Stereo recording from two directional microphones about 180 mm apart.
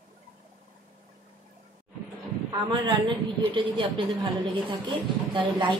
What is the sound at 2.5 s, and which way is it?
A woman's voice, 25° right (ahead or behind).